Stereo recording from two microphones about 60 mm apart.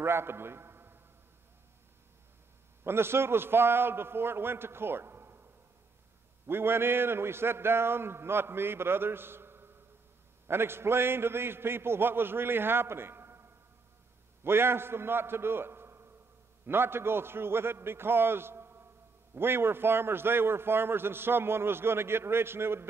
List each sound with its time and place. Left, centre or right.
0.0 s a man's voice: right
2.8 s a man's voice: right
6.4 s a man's voice: right